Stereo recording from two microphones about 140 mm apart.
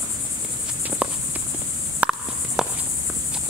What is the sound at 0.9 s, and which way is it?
Cricket, 5° right (ahead or behind).